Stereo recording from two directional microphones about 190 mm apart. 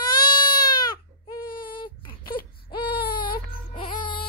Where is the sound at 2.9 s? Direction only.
25° left (ahead or behind).